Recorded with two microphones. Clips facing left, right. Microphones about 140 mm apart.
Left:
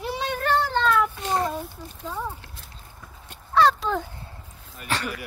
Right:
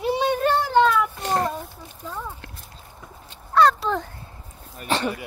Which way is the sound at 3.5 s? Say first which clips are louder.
Right 2 dB; centre (ahead or behind).